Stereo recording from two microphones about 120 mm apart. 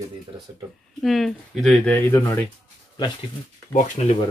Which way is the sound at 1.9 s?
20° left (ahead or behind).